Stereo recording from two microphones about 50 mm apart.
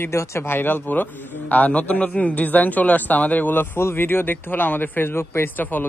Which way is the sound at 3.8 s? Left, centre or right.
Left.